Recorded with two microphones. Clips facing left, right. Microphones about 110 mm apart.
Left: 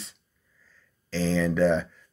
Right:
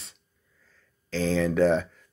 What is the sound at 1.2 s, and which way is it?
Speech, centre (ahead or behind).